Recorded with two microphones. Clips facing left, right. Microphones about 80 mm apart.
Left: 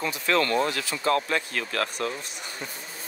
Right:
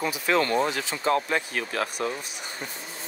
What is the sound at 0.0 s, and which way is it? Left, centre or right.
Speech, centre.